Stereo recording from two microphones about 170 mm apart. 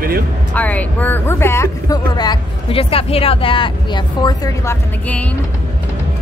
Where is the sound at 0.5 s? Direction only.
10° left (ahead or behind).